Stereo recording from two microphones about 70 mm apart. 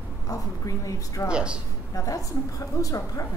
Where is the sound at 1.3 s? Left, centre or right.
Centre.